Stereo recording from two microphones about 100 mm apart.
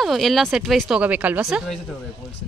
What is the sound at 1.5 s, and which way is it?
Speech, 5° right (ahead or behind).